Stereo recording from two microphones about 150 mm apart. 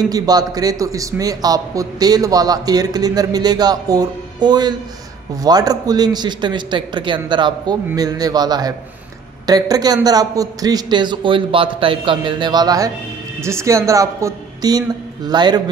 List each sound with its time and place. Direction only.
0.1 s a man's voice: 25° right (ahead or behind)